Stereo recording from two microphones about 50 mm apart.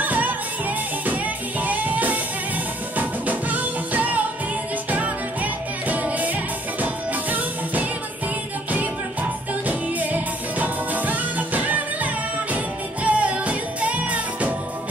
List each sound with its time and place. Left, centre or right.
0.0 s music: right
9.7 s music: right